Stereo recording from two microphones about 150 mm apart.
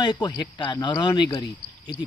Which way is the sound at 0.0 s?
30° left (ahead or behind).